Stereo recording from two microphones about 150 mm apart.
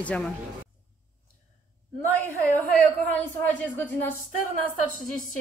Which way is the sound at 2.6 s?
10° left (ahead or behind).